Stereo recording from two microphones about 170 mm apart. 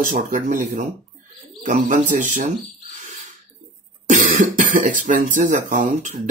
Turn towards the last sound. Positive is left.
turn(degrees=-45)  # may be behind; listen again after turning